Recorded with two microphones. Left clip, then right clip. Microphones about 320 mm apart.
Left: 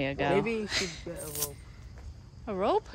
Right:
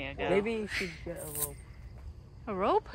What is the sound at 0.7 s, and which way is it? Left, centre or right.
Speech, centre.